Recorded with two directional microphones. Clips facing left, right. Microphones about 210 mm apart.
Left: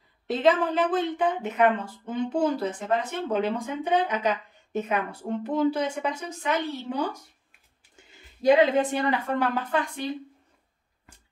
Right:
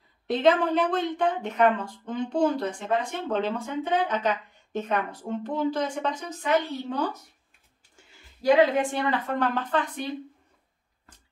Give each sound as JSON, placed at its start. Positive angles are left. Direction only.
{"t": 0.3, "sound": "a woman's voice", "side_deg": 0}